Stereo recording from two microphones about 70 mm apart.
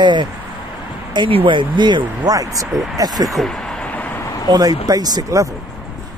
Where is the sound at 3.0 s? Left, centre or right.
Right.